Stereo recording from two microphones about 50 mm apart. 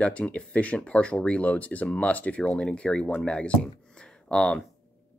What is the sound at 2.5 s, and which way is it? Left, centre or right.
Speech, centre.